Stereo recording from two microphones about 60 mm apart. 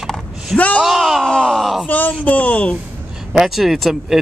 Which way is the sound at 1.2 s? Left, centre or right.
Centre.